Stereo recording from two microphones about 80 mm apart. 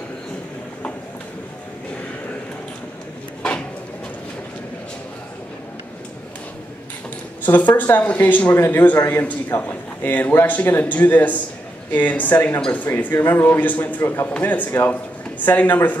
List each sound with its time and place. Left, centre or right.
7.4 s speech: left